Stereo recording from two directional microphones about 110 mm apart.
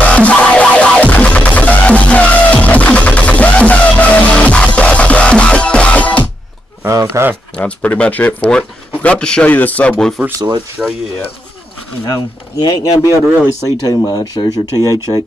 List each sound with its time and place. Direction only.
0.0 s music: 10° left (ahead or behind)
6.9 s a sound: 30° right (ahead or behind)
7.5 s speech: 10° left (ahead or behind)
12.6 s speech: 30° left (ahead or behind)